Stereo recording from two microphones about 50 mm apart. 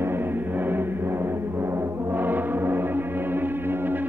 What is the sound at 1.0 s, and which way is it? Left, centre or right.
Music, right.